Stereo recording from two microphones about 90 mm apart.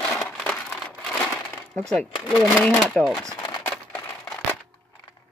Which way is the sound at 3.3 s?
50° left (ahead or behind).